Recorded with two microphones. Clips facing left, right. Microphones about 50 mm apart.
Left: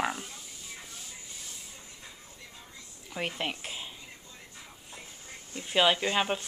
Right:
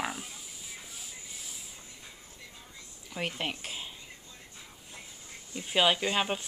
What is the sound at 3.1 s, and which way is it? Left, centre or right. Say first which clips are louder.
Speech: left 1 dB; centre.